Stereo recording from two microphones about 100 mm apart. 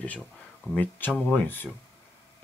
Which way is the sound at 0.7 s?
20° left (ahead or behind).